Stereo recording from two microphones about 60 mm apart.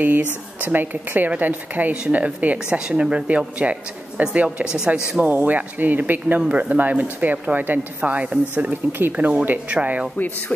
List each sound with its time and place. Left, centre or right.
0.0 s speech: right
4.6 s speech: centre
5.2 s speech: right